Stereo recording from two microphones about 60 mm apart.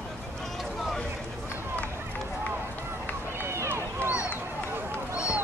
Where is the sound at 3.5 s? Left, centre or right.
Right.